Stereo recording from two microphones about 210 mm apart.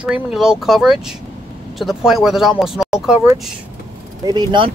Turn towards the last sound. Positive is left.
turn(degrees=-20)  # may be behind; listen again after turning